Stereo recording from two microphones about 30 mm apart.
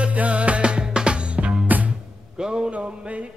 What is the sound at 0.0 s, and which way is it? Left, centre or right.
Music, right.